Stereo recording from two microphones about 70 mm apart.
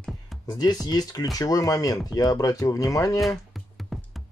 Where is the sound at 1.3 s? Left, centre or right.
Left.